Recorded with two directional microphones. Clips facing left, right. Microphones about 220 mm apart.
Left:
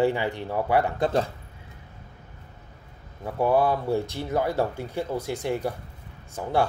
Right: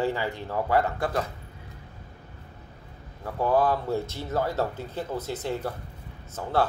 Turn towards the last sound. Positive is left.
turn(degrees=15)  # may be behind; listen again after turning